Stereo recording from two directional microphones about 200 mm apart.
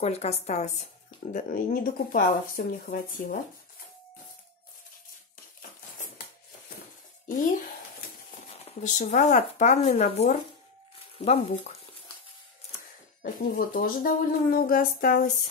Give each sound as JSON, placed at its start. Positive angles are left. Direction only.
{"t": 0.0, "sound": "speech", "side_deg": 35}
{"t": 7.2, "sound": "speech", "side_deg": 40}
{"t": 13.2, "sound": "speech", "side_deg": 45}